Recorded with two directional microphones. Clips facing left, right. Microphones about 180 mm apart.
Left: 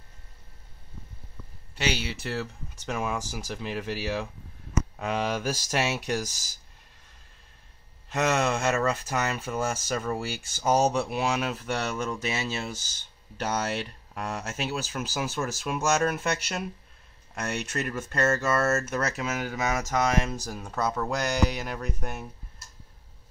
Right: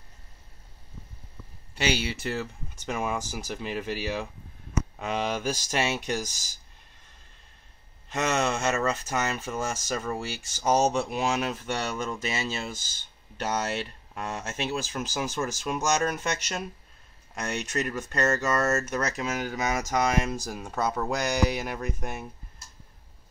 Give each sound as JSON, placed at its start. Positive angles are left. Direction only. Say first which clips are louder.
{"t": 1.8, "sound": "speech", "louder": "right 2 dB", "side_deg": -5}
{"t": 8.1, "sound": "speech", "louder": "left 1 dB", "side_deg": 5}
{"t": 14.1, "sound": "speech", "louder": "even", "side_deg": 5}